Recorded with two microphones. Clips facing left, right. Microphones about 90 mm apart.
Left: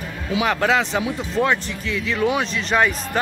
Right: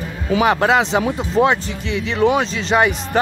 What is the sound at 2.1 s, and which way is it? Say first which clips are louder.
Speech: right 5 dB; 25° right (ahead or behind).